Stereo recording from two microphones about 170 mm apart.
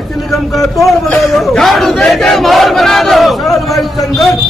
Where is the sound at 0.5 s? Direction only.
Centre (ahead or behind).